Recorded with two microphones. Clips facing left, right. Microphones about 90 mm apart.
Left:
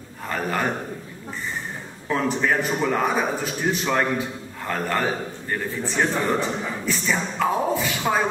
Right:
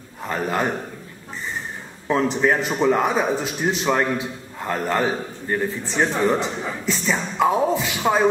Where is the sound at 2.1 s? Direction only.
10° right (ahead or behind).